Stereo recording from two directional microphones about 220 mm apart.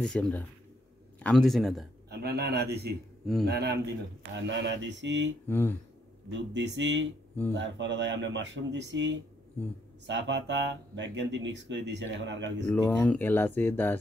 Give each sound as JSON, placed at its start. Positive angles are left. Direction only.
{"t": 0.0, "sound": "speech", "side_deg": 5}
{"t": 2.0, "sound": "a man's voice", "side_deg": -45}
{"t": 5.5, "sound": "speech", "side_deg": 10}
{"t": 6.3, "sound": "speech", "side_deg": -55}
{"t": 12.6, "sound": "speech", "side_deg": 10}